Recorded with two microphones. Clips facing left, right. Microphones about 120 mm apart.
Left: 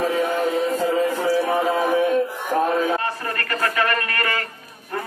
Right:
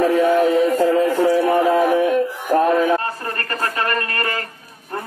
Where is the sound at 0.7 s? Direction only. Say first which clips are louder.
Right 5 dB; 50° right (ahead or behind).